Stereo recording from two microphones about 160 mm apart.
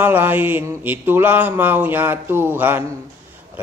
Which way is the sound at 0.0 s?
10° right (ahead or behind).